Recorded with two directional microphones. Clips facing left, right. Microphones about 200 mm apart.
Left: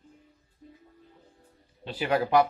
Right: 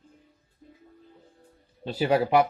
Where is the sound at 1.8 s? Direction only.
40° right (ahead or behind).